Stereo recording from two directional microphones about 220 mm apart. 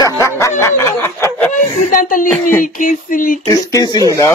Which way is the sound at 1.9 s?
40° left (ahead or behind).